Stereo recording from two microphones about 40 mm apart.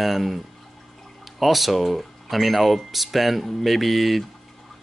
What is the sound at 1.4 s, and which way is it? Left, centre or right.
Speech, centre.